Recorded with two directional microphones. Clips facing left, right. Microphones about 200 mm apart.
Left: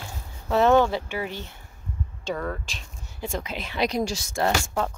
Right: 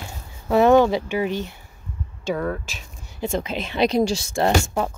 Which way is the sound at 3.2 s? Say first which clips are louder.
Right 6 dB; 25° right (ahead or behind).